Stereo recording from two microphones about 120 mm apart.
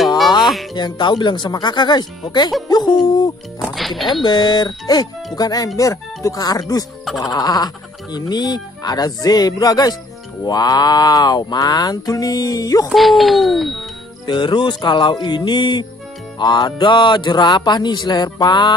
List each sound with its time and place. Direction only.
0.7 s speech: 40° left (ahead or behind)
3.7 s speech: centre (ahead or behind)
4.1 s speech: 40° left (ahead or behind)
12.9 s speech: centre (ahead or behind)
14.2 s speech: 40° left (ahead or behind)